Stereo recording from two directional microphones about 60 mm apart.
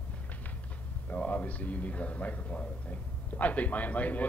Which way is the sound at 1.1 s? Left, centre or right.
Left.